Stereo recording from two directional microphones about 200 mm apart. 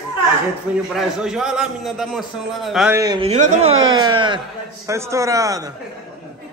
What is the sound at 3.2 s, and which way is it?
Speech, 35° right (ahead or behind).